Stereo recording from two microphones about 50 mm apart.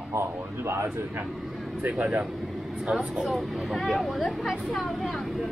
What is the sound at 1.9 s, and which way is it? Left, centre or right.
Speech, right.